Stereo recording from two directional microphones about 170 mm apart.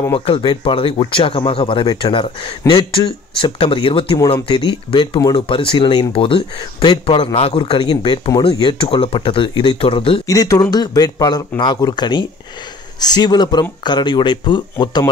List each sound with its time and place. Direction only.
0.1 s speech: 30° left (ahead or behind)
10.2 s speech: 20° left (ahead or behind)